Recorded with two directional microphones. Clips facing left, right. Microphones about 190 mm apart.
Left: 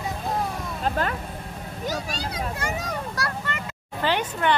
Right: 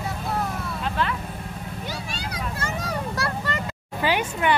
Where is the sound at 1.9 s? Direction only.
40° left (ahead or behind).